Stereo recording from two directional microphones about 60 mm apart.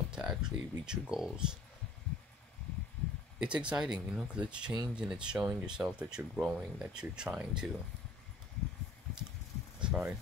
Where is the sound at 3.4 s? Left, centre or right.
Centre.